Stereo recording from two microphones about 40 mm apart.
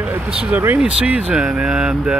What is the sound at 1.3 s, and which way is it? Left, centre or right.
Speech, right.